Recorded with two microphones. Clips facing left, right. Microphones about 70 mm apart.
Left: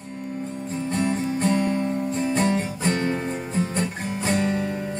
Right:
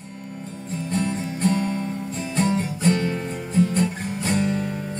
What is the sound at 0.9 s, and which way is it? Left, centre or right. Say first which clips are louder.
Music: left 2 dB; left.